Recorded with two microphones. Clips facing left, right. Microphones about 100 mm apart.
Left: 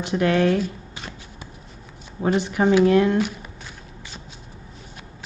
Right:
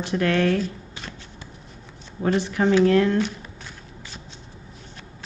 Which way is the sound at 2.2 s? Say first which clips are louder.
Left 1 dB; 15° left (ahead or behind).